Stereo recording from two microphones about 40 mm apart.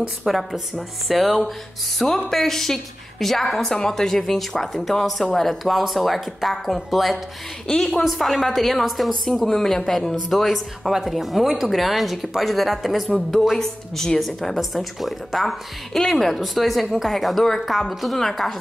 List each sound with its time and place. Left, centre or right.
0.2 s a woman's voice: centre
13.6 s a woman's voice: centre
14.2 s a woman's voice: centre